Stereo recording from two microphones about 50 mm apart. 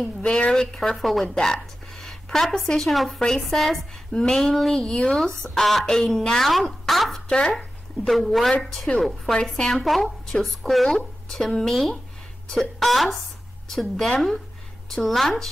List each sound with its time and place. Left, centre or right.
0.2 s a woman's voice: centre
0.8 s speech: centre
1.3 s a sound: centre
2.2 s a woman's voice: centre
4.1 s a sound: centre
4.4 s a woman's voice: centre
7.2 s speech: centre
7.5 s a woman's voice: centre
10.3 s a woman's voice: centre